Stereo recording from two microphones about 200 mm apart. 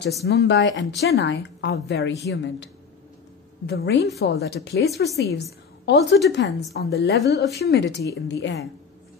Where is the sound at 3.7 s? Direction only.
55° left (ahead or behind).